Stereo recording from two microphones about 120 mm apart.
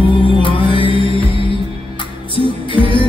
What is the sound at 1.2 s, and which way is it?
Music, 45° left (ahead or behind).